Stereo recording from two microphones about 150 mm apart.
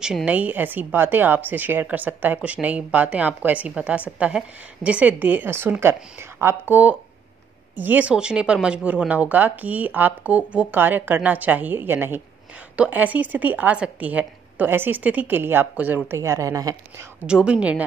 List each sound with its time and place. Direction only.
0.0 s a woman's voice: 5° right (ahead or behind)
17.2 s a woman's voice: 5° right (ahead or behind)